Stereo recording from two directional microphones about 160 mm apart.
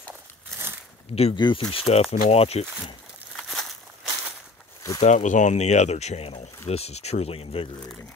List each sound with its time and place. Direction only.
1.1 s speech: 35° left (ahead or behind)
3.3 s a sound: centre (ahead or behind)
5.0 s speech: 50° left (ahead or behind)